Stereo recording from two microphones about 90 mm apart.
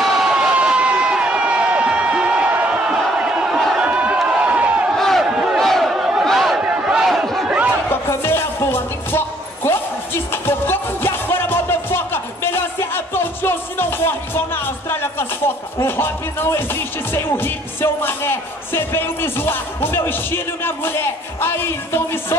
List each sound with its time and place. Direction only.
0.0 s a sound: 5° right (ahead or behind)
4.9 s battle cry: centre (ahead or behind)
5.2 s battle cry: 10° right (ahead or behind)
5.6 s a sound: centre (ahead or behind)
6.6 s battle cry: 10° right (ahead or behind)
7.4 s chatter: 15° right (ahead or behind)
7.9 s music: 25° left (ahead or behind)
17.1 s speech: 25° left (ahead or behind)